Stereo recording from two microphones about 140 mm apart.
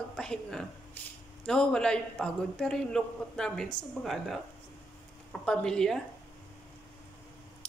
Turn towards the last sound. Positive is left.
turn(degrees=5)  # may be behind; listen again after turning